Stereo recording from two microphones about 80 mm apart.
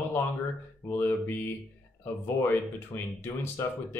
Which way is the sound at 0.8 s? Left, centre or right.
Left.